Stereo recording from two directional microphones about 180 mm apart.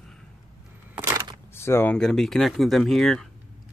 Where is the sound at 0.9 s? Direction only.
15° right (ahead or behind).